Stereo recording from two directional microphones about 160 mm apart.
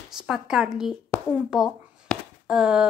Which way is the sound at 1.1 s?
15° left (ahead or behind).